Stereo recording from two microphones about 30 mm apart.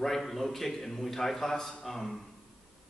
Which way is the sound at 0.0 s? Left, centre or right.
Centre.